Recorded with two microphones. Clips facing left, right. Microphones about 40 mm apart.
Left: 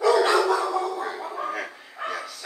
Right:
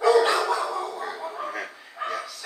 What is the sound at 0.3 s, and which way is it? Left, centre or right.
Dog, left.